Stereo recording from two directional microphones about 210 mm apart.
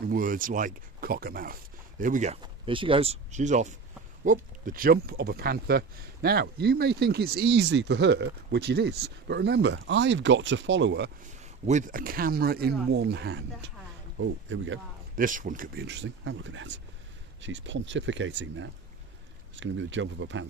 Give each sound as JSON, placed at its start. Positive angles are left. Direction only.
{"t": 0.1, "sound": "speech", "side_deg": -40}
{"t": 11.6, "sound": "speech", "side_deg": -35}
{"t": 14.2, "sound": "speech", "side_deg": -65}
{"t": 15.1, "sound": "speech", "side_deg": -40}